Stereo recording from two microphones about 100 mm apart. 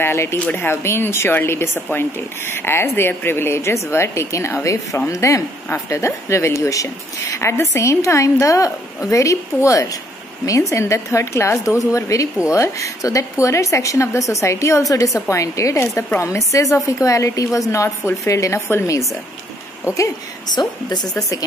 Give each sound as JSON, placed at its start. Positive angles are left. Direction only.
{"t": 0.0, "sound": "a woman's voice", "side_deg": 25}
{"t": 20.5, "sound": "a woman's voice", "side_deg": 45}